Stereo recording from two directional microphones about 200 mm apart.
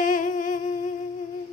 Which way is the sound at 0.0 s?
40° left (ahead or behind).